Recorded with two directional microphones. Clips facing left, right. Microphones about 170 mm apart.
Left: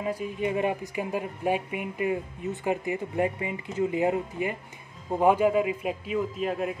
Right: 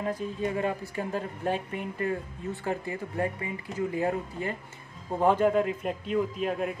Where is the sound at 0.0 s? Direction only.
10° left (ahead or behind).